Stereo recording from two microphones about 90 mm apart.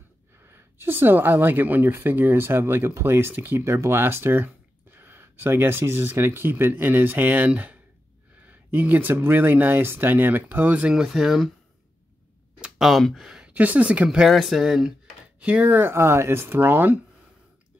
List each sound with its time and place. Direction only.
0.4 s speech: 25° right (ahead or behind); by 11.5 s 5° right (ahead or behind)
12.5 s speech: 10° right (ahead or behind)
15.4 s speech: 15° right (ahead or behind)